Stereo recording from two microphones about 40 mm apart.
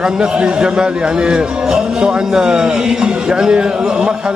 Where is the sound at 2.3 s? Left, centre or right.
Centre.